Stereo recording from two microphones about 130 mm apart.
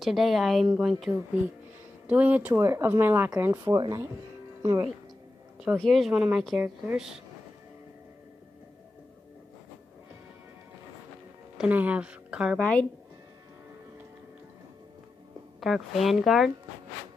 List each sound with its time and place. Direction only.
0.0 s a woman's voice: centre (ahead or behind); by 3.7 s 20° right (ahead or behind)
3.7 s speech: 30° right (ahead or behind)
5.8 s a woman's voice: centre (ahead or behind)
11.5 s speech: 10° right (ahead or behind)
12.5 s speech: 10° left (ahead or behind)
15.6 s a woman's voice: centre (ahead or behind)